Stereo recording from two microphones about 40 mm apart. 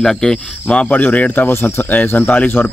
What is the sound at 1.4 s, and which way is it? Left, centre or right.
Speech, left.